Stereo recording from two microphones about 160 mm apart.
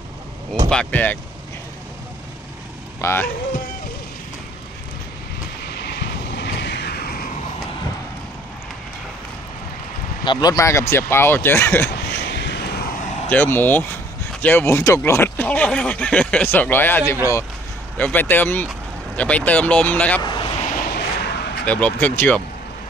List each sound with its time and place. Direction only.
0.7 s speech: 10° left (ahead or behind)
3.0 s speech: 15° left (ahead or behind)
5.7 s vehicle: 90° left; by 7.2 s 70° left (ahead or behind)
10.2 s speech: 25° left (ahead or behind)
11.9 s vehicle: 85° left; by 13.2 s 55° left (ahead or behind)
13.3 s speech: 15° left (ahead or behind)
20.2 s vehicle: 30° left (ahead or behind)
20.7 s vehicle: 80° left
21.6 s speech: 10° left (ahead or behind)